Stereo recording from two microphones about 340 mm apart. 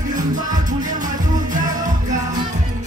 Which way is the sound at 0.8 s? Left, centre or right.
Right.